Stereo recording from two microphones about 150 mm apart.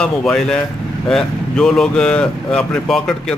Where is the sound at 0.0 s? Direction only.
5° left (ahead or behind).